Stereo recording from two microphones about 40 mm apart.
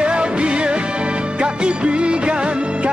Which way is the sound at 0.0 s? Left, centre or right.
Right.